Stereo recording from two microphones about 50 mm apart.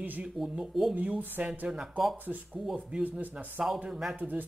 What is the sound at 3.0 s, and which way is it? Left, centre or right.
Speech, right.